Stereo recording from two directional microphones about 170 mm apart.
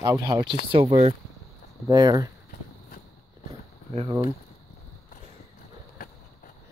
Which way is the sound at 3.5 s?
35° right (ahead or behind).